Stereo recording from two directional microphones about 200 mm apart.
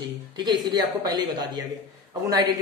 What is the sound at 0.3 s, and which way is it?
A man's voice, 20° right (ahead or behind).